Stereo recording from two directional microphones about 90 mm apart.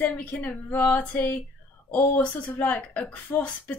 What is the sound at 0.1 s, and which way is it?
Speech, 15° left (ahead or behind).